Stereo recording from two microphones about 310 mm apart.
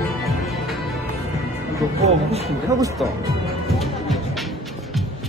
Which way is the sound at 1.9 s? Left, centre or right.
Centre.